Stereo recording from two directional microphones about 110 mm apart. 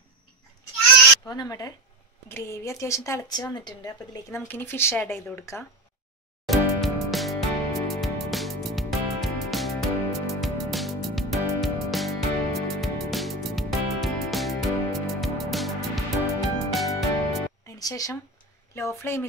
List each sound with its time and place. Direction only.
1.2 s speech: 35° left (ahead or behind)
2.2 s speech: 25° left (ahead or behind)
3.3 s speech: 40° left (ahead or behind)
4.5 s speech: 20° left (ahead or behind)
6.4 s music: centre (ahead or behind)
17.6 s music: 35° left (ahead or behind)
18.8 s speech: 25° left (ahead or behind)